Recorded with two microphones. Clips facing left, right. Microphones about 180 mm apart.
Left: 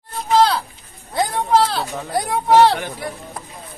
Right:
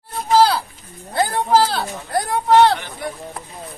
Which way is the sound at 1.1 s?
Centre (ahead or behind).